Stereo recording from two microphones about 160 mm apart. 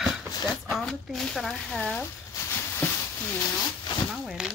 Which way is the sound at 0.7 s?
Centre (ahead or behind).